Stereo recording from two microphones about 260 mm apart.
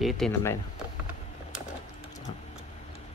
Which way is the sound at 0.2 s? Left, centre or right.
Centre.